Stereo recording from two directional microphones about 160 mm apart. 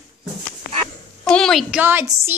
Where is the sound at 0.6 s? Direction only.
65° left (ahead or behind).